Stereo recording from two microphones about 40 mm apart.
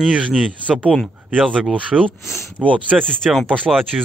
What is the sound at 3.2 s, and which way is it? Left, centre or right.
Speech, centre.